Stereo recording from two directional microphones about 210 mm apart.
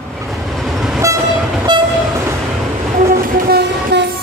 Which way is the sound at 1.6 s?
15° right (ahead or behind).